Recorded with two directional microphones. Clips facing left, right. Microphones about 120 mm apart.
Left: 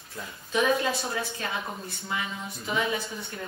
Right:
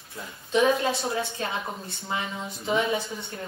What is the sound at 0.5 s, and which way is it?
Speech, 25° right (ahead or behind).